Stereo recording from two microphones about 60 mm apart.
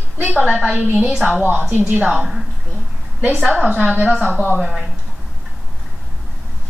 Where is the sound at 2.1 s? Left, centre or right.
Centre.